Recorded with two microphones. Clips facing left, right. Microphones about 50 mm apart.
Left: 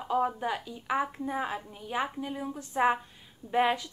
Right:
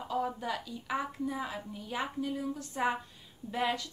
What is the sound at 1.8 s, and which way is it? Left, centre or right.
Speech, left.